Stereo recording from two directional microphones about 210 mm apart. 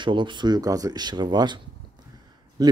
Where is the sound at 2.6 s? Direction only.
20° right (ahead or behind).